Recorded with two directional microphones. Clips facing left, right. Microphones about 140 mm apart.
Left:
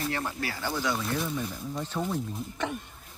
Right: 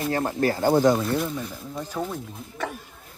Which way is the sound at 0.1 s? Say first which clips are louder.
Right 9 dB; 40° right (ahead or behind).